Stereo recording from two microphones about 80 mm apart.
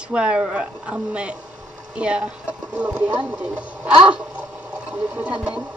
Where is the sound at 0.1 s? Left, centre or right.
Centre.